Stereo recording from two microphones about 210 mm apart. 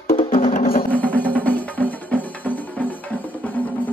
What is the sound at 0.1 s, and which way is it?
Music, 40° left (ahead or behind).